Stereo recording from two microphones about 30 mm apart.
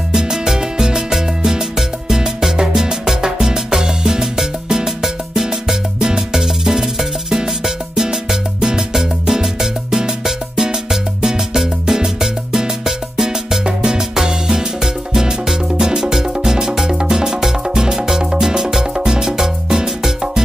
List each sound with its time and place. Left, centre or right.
0.3 s music: centre
13.7 s music: right